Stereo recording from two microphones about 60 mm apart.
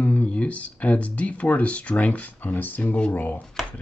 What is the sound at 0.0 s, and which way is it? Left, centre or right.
Speech, left.